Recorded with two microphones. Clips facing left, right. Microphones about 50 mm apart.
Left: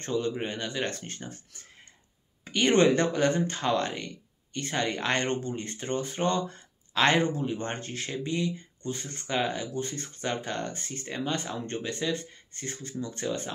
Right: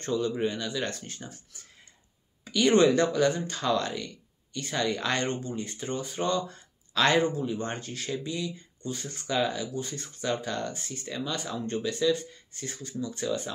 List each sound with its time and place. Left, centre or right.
0.0 s speech: left